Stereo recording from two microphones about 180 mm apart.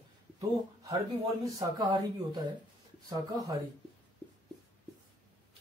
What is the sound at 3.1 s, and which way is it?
Speech, 20° right (ahead or behind).